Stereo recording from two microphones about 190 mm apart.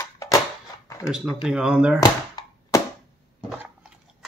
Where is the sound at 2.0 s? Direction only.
20° left (ahead or behind).